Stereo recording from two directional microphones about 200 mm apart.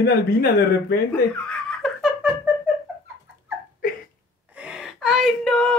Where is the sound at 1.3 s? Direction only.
5° left (ahead or behind).